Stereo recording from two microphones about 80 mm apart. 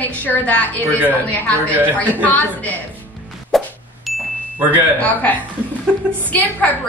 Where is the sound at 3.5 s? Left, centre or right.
Centre.